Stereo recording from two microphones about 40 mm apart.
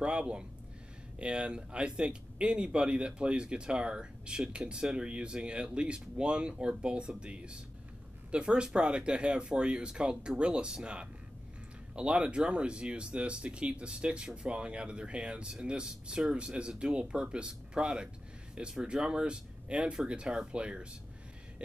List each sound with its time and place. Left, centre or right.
0.0 s speech: right